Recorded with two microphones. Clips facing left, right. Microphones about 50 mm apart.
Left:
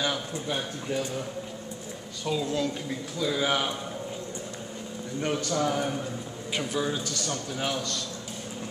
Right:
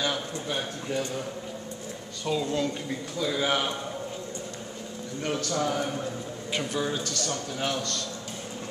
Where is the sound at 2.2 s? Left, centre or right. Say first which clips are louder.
Right 1 dB; centre.